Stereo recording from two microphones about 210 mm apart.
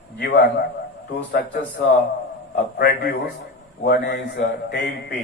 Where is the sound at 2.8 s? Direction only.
50° left (ahead or behind).